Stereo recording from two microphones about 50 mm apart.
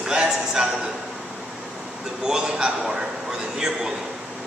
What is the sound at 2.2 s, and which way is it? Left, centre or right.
A man's voice, centre.